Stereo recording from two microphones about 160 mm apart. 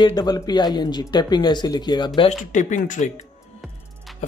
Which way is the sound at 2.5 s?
50° left (ahead or behind).